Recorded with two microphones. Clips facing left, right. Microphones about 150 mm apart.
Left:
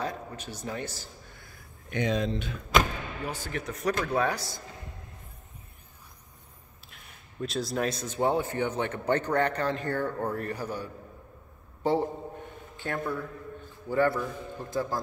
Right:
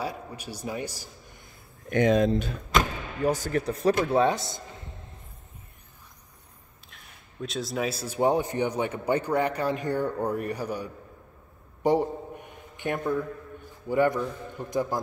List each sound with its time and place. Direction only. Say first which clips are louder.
0.0 s speech: right 1 dB; 10° right (ahead or behind)
1.9 s speech: right 7 dB; 50° right (ahead or behind); by 4.6 s 20° right (ahead or behind)
6.9 s speech: right 1 dB; centre (ahead or behind)
11.8 s a sound: right 3 dB; 15° right (ahead or behind)
13.8 s speech: right 2 dB; 15° right (ahead or behind)